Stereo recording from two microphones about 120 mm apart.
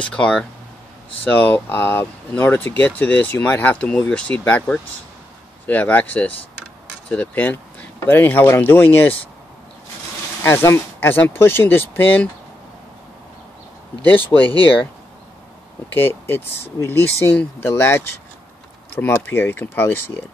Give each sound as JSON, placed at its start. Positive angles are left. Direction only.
{"t": 0.0, "sound": "speech", "side_deg": 10}
{"t": 10.4, "sound": "speech", "side_deg": 20}
{"t": 14.3, "sound": "speech", "side_deg": 25}
{"t": 15.9, "sound": "speech", "side_deg": 20}